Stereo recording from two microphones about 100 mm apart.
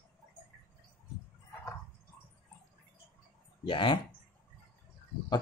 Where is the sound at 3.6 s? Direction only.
60° left (ahead or behind).